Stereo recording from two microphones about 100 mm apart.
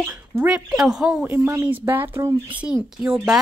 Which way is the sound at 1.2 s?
25° right (ahead or behind).